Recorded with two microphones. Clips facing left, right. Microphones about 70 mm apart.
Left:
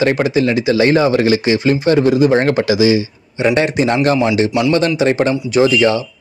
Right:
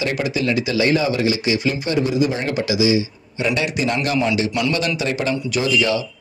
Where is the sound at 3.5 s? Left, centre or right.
Left.